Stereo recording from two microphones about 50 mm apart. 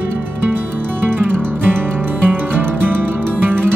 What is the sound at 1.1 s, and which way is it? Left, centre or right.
Music, right.